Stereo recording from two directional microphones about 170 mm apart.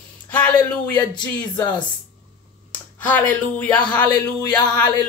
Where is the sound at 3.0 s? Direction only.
10° left (ahead or behind).